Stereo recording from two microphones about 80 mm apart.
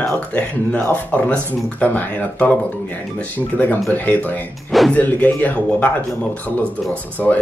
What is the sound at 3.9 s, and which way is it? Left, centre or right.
A man's voice, left.